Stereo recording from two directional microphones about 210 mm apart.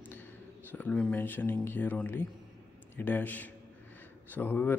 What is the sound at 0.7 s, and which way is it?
A man's voice, 5° left (ahead or behind).